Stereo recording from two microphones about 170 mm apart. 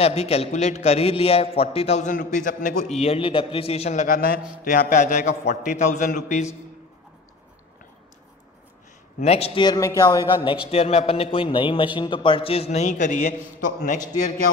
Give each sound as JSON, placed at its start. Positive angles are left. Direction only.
{"t": 0.0, "sound": "a man's voice", "side_deg": 35}
{"t": 3.0, "sound": "a man's voice", "side_deg": 35}
{"t": 9.2, "sound": "a man's voice", "side_deg": 35}
{"t": 9.7, "sound": "a man's voice", "side_deg": 20}